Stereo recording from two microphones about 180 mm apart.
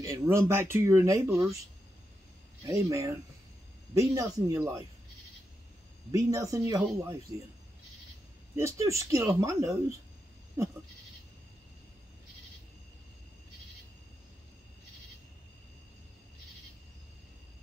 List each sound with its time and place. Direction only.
0.0 s speech: 15° right (ahead or behind)
2.6 s speech: 15° right (ahead or behind)
6.1 s speech: 20° right (ahead or behind)
8.5 s speech: 15° right (ahead or behind)